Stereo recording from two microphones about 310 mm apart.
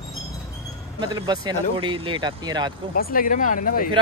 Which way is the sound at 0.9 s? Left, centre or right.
Centre.